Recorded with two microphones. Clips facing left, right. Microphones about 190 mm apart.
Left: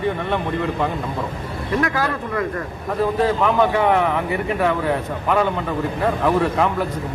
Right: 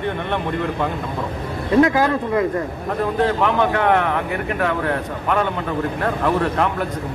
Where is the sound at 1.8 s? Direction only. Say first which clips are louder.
Right 5 dB; 20° right (ahead or behind).